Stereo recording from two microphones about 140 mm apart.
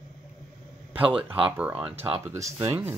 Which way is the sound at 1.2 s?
40° right (ahead or behind).